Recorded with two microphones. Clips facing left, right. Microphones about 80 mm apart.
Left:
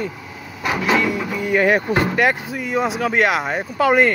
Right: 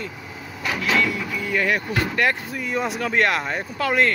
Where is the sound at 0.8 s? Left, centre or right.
Left.